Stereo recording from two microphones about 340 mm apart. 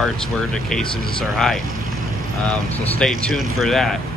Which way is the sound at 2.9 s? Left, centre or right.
Centre.